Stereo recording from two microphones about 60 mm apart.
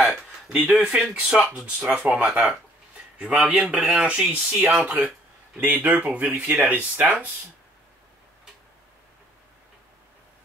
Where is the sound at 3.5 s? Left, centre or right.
Right.